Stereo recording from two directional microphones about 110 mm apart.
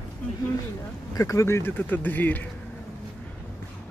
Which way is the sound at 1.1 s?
30° left (ahead or behind).